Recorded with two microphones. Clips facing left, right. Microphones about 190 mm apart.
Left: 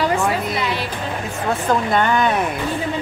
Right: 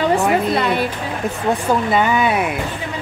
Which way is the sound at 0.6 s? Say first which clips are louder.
Right 5 dB; 55° right (ahead or behind).